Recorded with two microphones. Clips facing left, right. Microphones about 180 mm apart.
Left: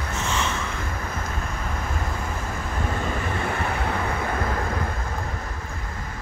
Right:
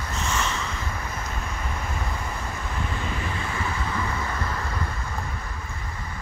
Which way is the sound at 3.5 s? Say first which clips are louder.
Left 3 dB; 60° left (ahead or behind).